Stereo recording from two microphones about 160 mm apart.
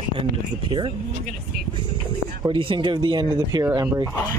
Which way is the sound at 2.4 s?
30° right (ahead or behind).